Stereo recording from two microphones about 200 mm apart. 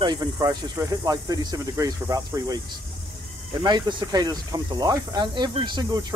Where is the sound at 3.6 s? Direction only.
20° right (ahead or behind).